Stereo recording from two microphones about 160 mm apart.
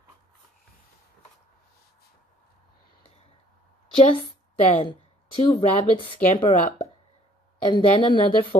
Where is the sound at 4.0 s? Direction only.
35° left (ahead or behind).